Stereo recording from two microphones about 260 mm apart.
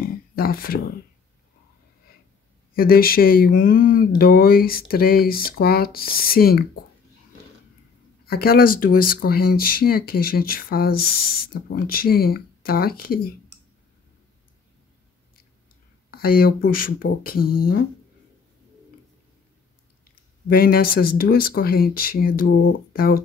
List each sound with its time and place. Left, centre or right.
0.0 s a sound: left
2.7 s speech: left
8.3 s speech: left
16.1 s speech: left
20.4 s speech: left